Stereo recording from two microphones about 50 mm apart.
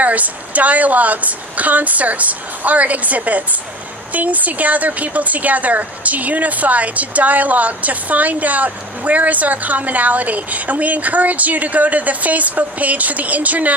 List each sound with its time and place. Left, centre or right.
0.0 s speech: right